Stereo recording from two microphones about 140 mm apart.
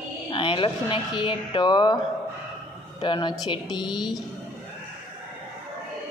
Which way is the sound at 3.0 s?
35° left (ahead or behind).